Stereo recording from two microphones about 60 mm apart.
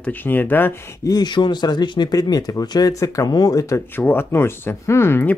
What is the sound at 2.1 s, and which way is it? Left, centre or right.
Speech, left.